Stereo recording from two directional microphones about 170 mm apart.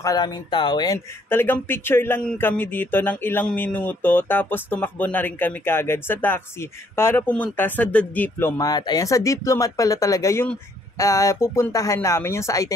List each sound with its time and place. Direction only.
0.0 s speech: 25° left (ahead or behind)
0.9 s speech: 15° left (ahead or behind)